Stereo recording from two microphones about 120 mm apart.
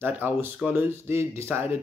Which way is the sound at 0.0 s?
15° right (ahead or behind).